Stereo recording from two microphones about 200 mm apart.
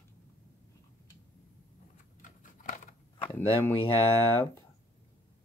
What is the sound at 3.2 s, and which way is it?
Speech, 10° left (ahead or behind).